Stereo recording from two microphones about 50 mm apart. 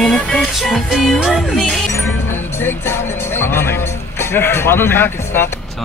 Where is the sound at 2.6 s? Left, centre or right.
Left.